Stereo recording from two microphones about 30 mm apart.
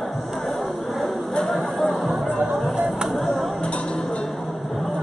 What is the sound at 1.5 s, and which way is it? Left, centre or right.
Music, centre.